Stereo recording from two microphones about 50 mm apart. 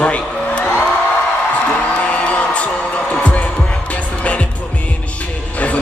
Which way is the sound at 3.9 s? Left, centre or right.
Left.